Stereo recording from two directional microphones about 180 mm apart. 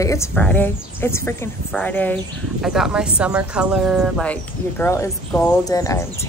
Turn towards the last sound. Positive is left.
turn(degrees=15)  # may be behind; listen again after turning